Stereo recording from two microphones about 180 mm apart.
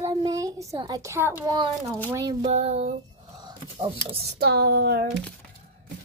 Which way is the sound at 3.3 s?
25° right (ahead or behind).